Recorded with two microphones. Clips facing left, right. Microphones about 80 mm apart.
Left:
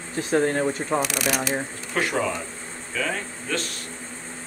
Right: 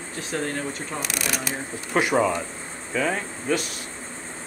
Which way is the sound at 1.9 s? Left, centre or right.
Centre.